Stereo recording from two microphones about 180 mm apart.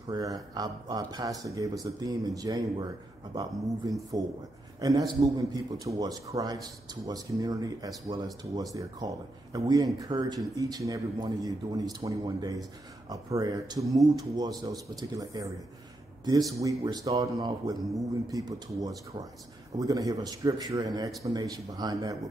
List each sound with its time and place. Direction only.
0.1 s a man's voice: 20° right (ahead or behind)
16.6 s a man's voice: 20° right (ahead or behind)